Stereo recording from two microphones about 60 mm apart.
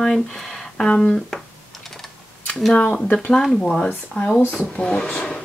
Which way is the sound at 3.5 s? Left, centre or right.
Centre.